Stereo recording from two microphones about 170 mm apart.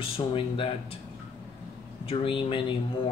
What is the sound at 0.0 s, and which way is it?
Speech, 30° left (ahead or behind).